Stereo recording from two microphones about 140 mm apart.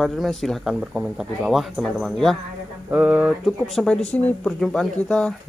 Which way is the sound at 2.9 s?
10° right (ahead or behind).